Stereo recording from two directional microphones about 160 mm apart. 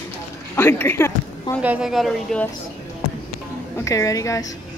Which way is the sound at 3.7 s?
20° left (ahead or behind).